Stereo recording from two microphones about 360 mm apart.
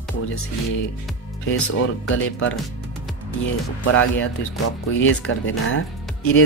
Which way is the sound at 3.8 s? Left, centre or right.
Left.